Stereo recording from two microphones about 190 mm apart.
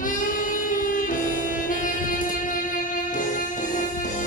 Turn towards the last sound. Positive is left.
turn(degrees=45)  # may be behind; listen again after turning